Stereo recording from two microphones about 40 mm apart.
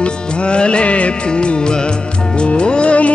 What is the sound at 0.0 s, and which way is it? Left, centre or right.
Music, left.